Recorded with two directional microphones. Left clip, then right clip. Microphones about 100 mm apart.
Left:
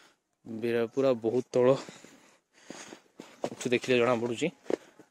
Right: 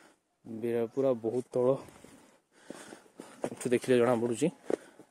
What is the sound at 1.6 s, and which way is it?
Speech, 25° left (ahead or behind).